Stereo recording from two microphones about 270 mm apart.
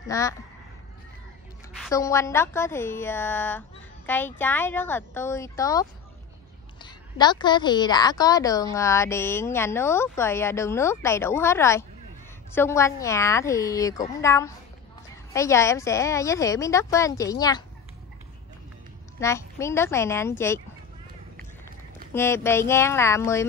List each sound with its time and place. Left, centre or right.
0.1 s speech: centre
1.9 s a woman's voice: centre
19.1 s speech: centre
22.1 s speech: centre